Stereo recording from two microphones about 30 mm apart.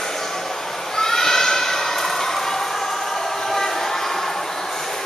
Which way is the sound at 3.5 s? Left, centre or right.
Centre.